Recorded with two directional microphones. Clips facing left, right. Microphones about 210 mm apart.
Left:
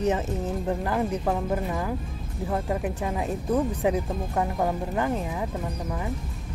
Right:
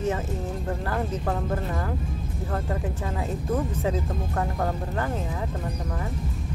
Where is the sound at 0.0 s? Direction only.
20° left (ahead or behind).